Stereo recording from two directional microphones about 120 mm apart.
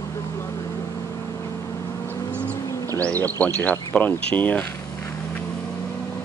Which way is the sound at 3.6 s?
15° left (ahead or behind).